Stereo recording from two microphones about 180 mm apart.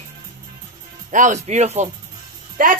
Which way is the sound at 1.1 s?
45° right (ahead or behind).